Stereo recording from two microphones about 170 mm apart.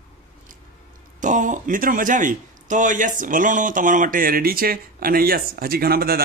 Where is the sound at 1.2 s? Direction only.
50° right (ahead or behind).